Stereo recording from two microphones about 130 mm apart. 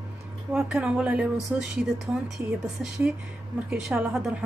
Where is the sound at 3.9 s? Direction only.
5° right (ahead or behind).